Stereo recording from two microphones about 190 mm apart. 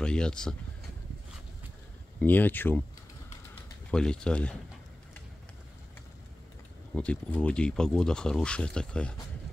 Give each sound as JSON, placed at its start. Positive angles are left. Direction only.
{"t": 0.0, "sound": "speech", "side_deg": 5}
{"t": 2.1, "sound": "speech", "side_deg": 10}
{"t": 3.9, "sound": "speech", "side_deg": 5}
{"t": 7.0, "sound": "speech", "side_deg": 5}